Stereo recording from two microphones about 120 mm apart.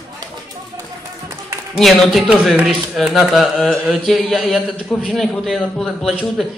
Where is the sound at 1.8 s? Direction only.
Centre (ahead or behind).